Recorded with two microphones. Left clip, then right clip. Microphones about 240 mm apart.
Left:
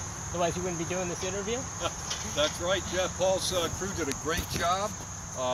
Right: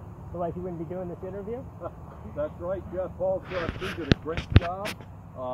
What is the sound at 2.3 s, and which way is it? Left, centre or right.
Speech, left.